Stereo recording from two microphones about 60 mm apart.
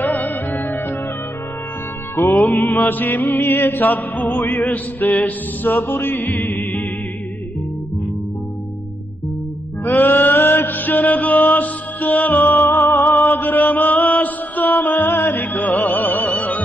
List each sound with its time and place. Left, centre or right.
0.0 s music: left
2.2 s music: left
2.5 s music: left
6.1 s music: left
9.8 s mantra: left
15.3 s music: left